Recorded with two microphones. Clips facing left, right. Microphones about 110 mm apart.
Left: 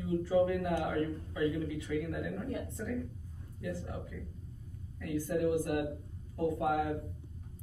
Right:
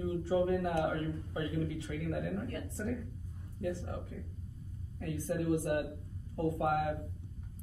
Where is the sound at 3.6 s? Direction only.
35° right (ahead or behind).